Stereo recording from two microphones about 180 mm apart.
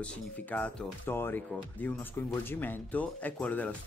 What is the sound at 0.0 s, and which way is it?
Speech, 10° left (ahead or behind).